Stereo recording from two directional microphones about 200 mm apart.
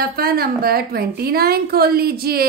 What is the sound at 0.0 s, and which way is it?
A woman's voice, 50° right (ahead or behind).